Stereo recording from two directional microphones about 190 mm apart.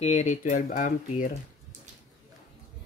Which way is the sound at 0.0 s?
40° left (ahead or behind).